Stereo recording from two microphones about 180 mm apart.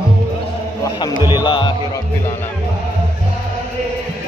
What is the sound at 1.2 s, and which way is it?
Music, 25° left (ahead or behind).